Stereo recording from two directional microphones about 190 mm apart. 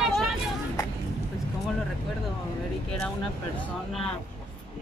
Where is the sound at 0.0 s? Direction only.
Centre (ahead or behind).